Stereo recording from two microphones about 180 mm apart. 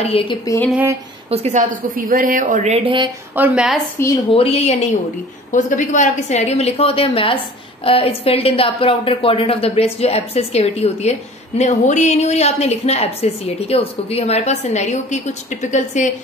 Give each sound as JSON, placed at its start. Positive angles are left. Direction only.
{"t": 0.0, "sound": "a woman's voice", "side_deg": 30}
{"t": 0.7, "sound": "a sound", "side_deg": -5}
{"t": 1.3, "sound": "a woman's voice", "side_deg": -40}
{"t": 3.3, "sound": "a woman's voice", "side_deg": -10}
{"t": 4.3, "sound": "a woman's voice", "side_deg": 35}